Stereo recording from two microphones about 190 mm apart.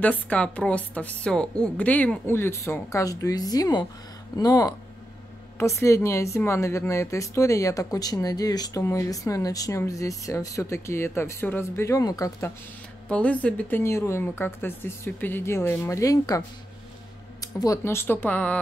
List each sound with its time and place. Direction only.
0.0 s a woman's voice: 5° left (ahead or behind)